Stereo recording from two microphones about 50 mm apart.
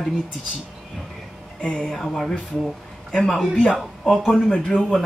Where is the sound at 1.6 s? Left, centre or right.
Left.